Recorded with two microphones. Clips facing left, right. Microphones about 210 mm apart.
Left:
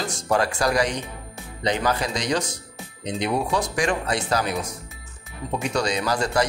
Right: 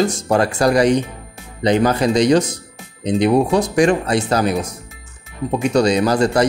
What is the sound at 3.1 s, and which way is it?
Speech, 35° right (ahead or behind).